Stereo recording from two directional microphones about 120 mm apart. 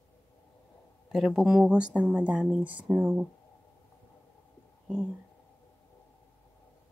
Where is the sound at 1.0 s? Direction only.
5° right (ahead or behind).